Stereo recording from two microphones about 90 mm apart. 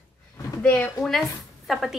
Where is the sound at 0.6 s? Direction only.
15° left (ahead or behind).